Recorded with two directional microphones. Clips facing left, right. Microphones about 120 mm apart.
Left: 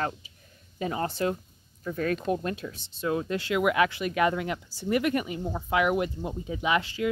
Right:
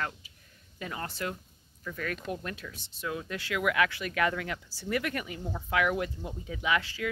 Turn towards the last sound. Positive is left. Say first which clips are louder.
# left 4 dB
turn(degrees=20)  # may be behind; listen again after turning